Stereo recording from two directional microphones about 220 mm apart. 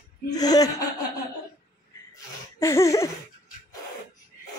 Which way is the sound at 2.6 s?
10° left (ahead or behind).